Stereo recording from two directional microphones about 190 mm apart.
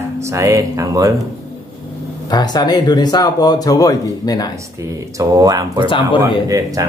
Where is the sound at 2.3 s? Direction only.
20° left (ahead or behind).